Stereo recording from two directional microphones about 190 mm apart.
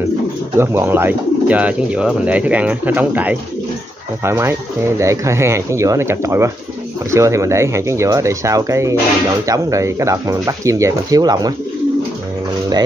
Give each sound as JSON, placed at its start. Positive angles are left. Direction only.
{"t": 0.6, "sound": "speech", "side_deg": -10}